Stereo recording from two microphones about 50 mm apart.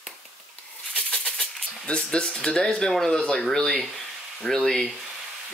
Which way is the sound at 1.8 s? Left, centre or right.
Centre.